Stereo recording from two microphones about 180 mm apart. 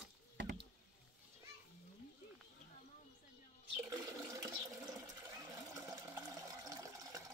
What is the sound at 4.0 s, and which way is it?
Water, 20° right (ahead or behind).